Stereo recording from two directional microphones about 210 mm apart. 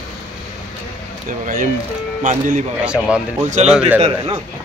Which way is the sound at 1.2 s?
40° right (ahead or behind).